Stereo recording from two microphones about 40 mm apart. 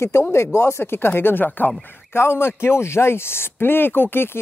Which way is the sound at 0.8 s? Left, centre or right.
Left.